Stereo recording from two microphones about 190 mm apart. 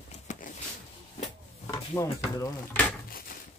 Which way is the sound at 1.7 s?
15° left (ahead or behind).